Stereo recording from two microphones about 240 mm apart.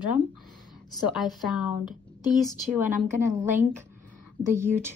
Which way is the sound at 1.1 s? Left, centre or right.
Centre.